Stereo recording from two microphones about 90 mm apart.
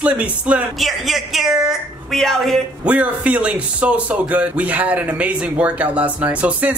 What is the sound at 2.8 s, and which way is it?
Speech, 15° right (ahead or behind).